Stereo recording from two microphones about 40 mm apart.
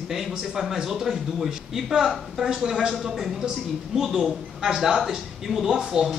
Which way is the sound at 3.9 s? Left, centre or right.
Right.